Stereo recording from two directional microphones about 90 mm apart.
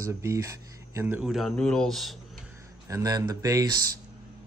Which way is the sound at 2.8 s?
40° right (ahead or behind).